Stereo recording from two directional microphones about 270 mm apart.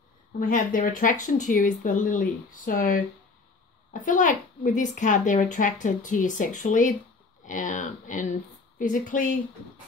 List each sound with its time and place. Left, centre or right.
0.4 s a child's voice: left